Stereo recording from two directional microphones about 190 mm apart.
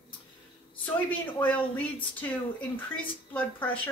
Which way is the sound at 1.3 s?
10° left (ahead or behind).